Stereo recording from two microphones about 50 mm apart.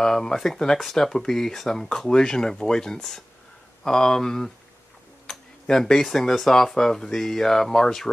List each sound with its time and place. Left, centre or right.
0.0 s speech: centre
5.2 s tick-tock: centre
6.0 s speech: centre